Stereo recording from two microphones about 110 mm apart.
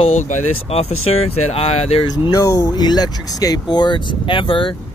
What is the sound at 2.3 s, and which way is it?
Speech, 35° left (ahead or behind).